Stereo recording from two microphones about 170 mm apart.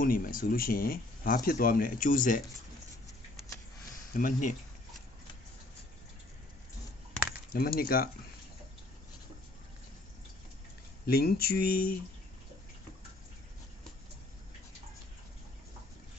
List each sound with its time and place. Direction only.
0.0 s speech: 55° left (ahead or behind)
4.1 s speech: 55° left (ahead or behind)
7.5 s speech: 60° left (ahead or behind)
11.1 s speech: 65° left (ahead or behind)